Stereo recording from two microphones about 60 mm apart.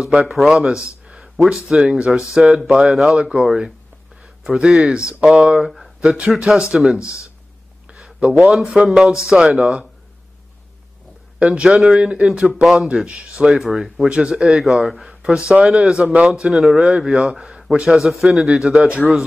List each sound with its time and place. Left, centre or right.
0.0 s a man's voice: centre
1.3 s speech: centre
1.7 s a man's voice: centre
7.9 s a sound: centre
8.8 s speech: centre
11.5 s a man's voice: centre
12.6 s a man's voice: centre
13.0 s speech: centre
13.5 s a man's voice: centre
14.0 s a man's voice: centre
17.6 s a man's voice: centre